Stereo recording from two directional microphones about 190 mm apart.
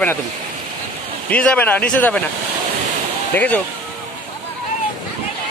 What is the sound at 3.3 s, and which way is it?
Speech, 10° left (ahead or behind).